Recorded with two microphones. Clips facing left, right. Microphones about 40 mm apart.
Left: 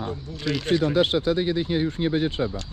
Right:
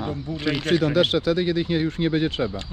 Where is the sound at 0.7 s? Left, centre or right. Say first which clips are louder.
Right 1 dB; right.